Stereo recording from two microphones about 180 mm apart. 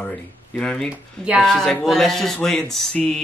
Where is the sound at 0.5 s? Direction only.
5° left (ahead or behind).